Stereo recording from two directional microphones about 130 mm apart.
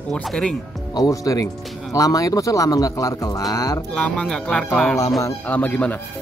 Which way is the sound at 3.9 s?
10° left (ahead or behind).